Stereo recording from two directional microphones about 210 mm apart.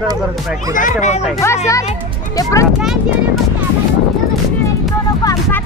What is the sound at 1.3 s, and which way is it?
Speech, 15° left (ahead or behind).